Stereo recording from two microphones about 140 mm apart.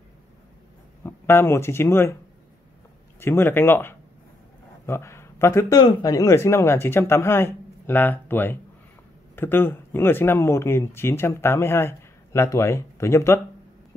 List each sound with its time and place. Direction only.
1.0 s speech: 15° left (ahead or behind)
3.2 s speech: 15° left (ahead or behind)